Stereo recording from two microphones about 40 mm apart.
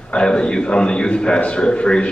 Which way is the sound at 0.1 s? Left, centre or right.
Left.